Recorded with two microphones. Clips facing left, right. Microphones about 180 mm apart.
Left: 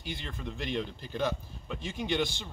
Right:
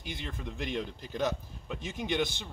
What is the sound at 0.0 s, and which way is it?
A man's voice, 5° right (ahead or behind).